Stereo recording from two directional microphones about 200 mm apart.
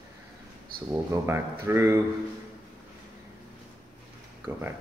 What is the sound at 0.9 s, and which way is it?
Speech, 10° right (ahead or behind).